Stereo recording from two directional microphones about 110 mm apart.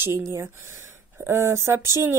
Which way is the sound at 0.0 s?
25° right (ahead or behind).